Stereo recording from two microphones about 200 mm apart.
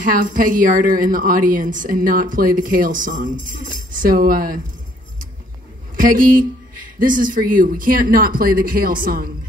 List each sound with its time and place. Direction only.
0.0 s speech: 45° right (ahead or behind)
5.9 s speech: 45° right (ahead or behind)